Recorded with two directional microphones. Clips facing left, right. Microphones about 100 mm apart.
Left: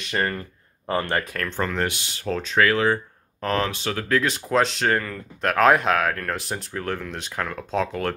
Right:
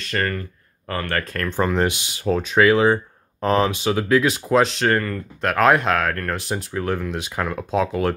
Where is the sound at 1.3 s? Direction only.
10° right (ahead or behind).